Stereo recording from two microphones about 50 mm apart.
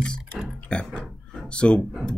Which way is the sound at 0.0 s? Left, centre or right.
Left.